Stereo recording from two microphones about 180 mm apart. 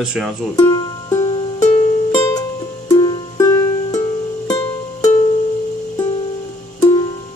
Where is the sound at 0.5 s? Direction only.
20° left (ahead or behind).